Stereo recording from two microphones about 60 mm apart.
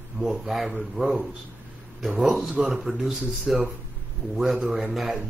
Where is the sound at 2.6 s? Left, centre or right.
Centre.